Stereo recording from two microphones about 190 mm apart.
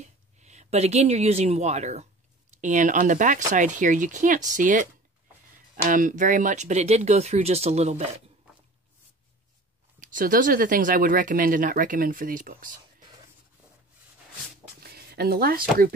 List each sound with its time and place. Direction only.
0.0 s speech: 35° right (ahead or behind)
5.9 s speech: 45° right (ahead or behind)
9.9 s speech: 45° right (ahead or behind)
14.8 s a sound: 55° right (ahead or behind)